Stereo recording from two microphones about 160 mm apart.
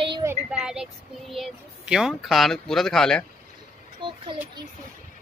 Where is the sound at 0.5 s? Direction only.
5° right (ahead or behind).